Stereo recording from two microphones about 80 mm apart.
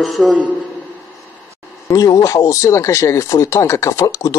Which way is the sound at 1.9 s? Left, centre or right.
Left.